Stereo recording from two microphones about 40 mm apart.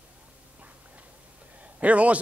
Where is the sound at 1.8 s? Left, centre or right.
Right.